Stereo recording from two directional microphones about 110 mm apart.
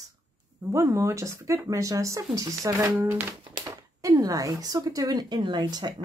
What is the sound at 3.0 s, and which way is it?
Speech, 20° right (ahead or behind).